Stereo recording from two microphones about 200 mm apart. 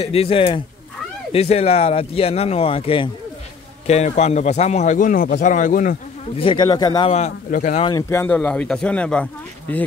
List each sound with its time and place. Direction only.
0.0 s speech: 30° left (ahead or behind)
6.3 s speech: 25° left (ahead or behind)
7.1 s speech: 35° left (ahead or behind)
7.8 s speech: 15° left (ahead or behind)